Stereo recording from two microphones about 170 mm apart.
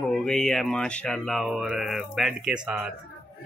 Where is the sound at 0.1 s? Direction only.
5° left (ahead or behind).